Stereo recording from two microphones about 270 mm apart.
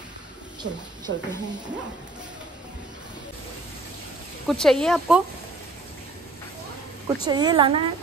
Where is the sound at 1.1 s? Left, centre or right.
Right.